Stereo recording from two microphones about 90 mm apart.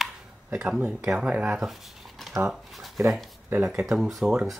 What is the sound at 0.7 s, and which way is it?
Speech, 15° right (ahead or behind).